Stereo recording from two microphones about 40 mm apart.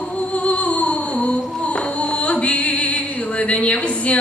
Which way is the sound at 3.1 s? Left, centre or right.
Left.